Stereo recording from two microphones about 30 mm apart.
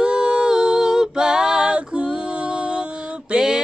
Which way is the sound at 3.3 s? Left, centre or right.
Right.